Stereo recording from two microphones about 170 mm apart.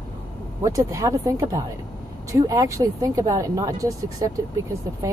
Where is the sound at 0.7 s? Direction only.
20° right (ahead or behind).